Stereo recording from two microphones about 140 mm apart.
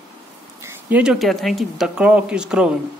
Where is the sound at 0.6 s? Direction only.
10° right (ahead or behind).